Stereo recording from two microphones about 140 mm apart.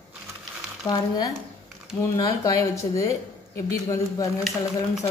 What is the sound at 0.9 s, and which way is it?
Speech, 25° left (ahead or behind).